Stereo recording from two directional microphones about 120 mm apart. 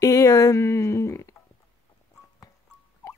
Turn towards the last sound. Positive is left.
turn(degrees=25)  # may be behind; listen again after turning